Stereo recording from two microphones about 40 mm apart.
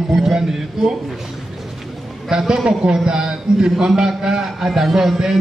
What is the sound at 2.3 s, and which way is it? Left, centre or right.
A man's voice, centre.